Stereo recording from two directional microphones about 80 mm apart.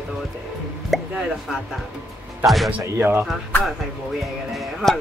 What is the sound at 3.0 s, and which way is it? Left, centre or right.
Speech, right.